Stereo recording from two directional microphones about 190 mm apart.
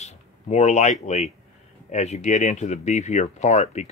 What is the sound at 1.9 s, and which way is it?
Speech, 35° left (ahead or behind).